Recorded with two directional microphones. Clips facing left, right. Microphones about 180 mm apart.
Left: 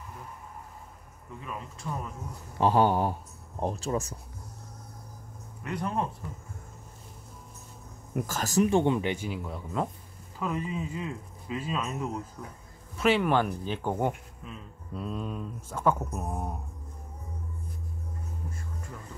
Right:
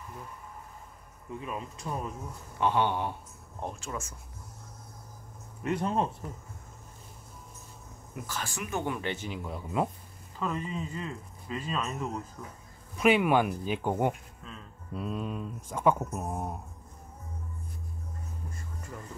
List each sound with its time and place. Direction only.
1.4 s speech: 20° right (ahead or behind)
2.6 s speech: 40° left (ahead or behind)
5.6 s speech: 25° right (ahead or behind)
8.1 s speech: 45° left (ahead or behind); by 9.0 s 25° left (ahead or behind)
9.0 s speech: 10° left (ahead or behind)
9.4 s speech: 5° right (ahead or behind)
10.4 s speech: 10° left (ahead or behind)
12.9 s speech: 15° right (ahead or behind)
14.4 s speech: 10° left (ahead or behind)
15.0 s speech: 5° right (ahead or behind)
16.0 s speech: centre (ahead or behind)